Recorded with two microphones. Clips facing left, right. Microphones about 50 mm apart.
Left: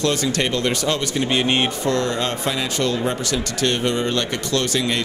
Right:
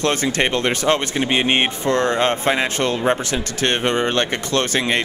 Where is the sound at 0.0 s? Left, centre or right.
Right.